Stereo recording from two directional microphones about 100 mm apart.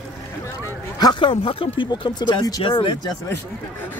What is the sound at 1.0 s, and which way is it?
Speech, 50° left (ahead or behind).